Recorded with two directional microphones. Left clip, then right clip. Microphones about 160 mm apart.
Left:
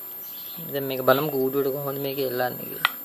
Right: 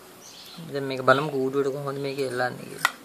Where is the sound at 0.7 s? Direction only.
20° left (ahead or behind).